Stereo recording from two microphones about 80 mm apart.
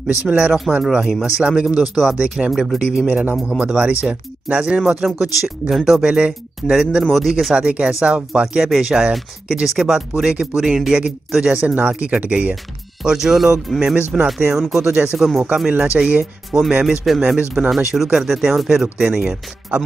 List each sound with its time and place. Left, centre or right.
0.0 s speech: centre
3.1 s speech: centre
13.0 s speech: centre
15.4 s speech: centre